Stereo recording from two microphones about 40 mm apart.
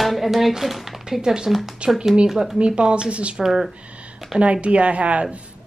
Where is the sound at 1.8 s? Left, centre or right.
Right.